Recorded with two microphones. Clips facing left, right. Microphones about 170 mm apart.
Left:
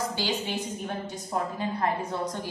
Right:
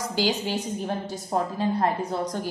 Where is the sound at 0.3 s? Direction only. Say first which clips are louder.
Right 3 dB; 35° right (ahead or behind).